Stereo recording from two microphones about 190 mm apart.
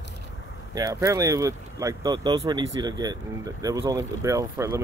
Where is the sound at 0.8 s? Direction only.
15° right (ahead or behind).